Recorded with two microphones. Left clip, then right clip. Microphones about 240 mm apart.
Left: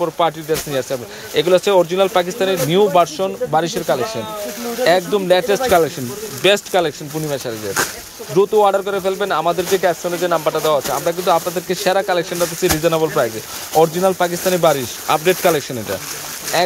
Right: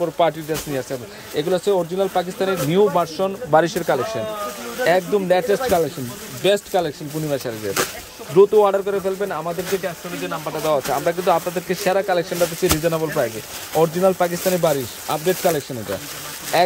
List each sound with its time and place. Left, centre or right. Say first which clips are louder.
0.0 s speech: left 1 dB; centre